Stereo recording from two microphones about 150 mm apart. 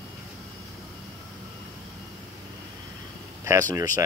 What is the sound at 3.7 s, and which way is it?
Speech, 25° right (ahead or behind).